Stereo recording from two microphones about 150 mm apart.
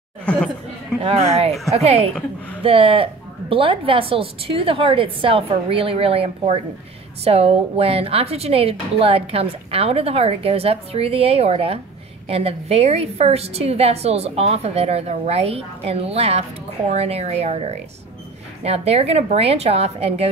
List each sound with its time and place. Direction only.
0.2 s chatter: 10° left (ahead or behind)
1.0 s a woman's voice: 45° right (ahead or behind)